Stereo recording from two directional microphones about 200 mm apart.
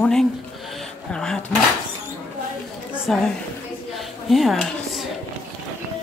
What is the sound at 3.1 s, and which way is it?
Speech, 5° left (ahead or behind).